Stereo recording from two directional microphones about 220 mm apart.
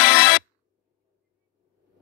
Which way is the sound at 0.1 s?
55° left (ahead or behind).